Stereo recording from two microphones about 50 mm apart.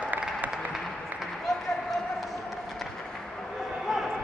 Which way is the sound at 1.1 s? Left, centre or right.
Centre.